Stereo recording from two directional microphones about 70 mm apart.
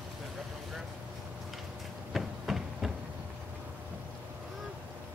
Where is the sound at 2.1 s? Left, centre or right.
Centre.